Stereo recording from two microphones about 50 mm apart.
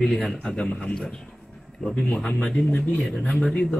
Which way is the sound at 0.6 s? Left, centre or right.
Left.